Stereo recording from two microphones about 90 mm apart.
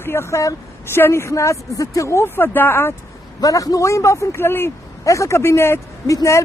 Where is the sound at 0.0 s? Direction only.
30° left (ahead or behind).